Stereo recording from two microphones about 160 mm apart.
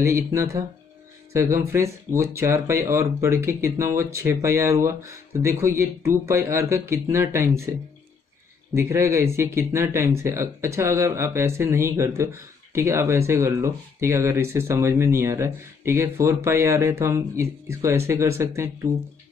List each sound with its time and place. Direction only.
0.0 s speech: 15° right (ahead or behind)
8.7 s speech: 15° right (ahead or behind)